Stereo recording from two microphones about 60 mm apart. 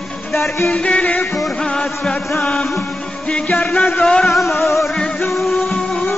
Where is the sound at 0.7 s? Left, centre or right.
Centre.